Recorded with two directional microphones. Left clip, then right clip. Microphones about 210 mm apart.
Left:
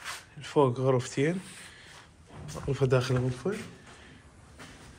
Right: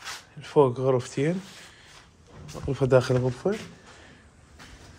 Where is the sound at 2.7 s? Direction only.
30° right (ahead or behind).